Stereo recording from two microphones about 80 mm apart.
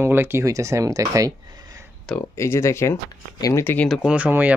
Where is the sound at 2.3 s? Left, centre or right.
Left.